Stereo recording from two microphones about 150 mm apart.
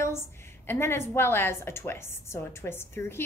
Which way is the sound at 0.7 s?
15° left (ahead or behind).